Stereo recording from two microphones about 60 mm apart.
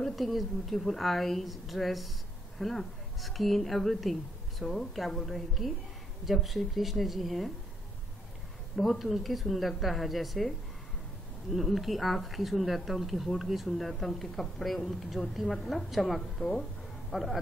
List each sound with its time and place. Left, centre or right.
0.0 s speech: centre
8.7 s speech: centre
11.5 s speech: centre